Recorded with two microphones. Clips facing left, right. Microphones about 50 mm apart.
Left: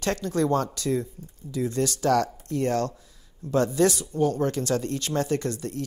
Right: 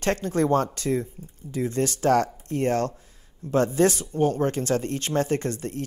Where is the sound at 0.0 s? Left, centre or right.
Right.